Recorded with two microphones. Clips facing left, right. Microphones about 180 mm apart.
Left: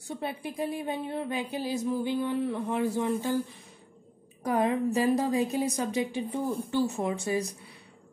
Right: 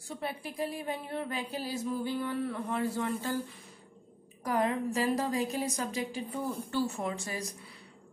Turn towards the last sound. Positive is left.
turn(degrees=20)  # may be behind; listen again after turning